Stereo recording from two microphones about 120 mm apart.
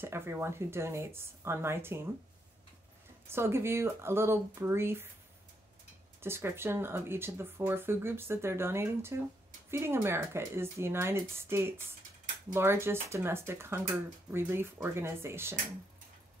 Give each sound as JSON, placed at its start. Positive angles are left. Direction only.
{"t": 0.0, "sound": "speech", "side_deg": -20}
{"t": 3.3, "sound": "speech", "side_deg": -20}
{"t": 6.2, "sound": "speech", "side_deg": -20}